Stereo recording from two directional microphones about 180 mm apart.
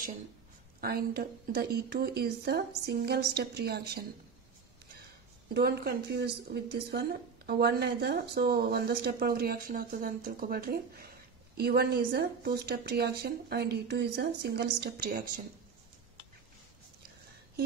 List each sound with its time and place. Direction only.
0.7 s a woman's voice: 60° right (ahead or behind)
5.5 s a woman's voice: 60° right (ahead or behind)